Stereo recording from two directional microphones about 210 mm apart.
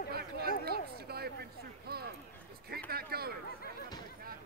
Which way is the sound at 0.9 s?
50° right (ahead or behind).